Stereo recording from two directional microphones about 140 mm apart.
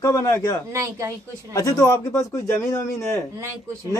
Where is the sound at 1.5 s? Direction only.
25° left (ahead or behind).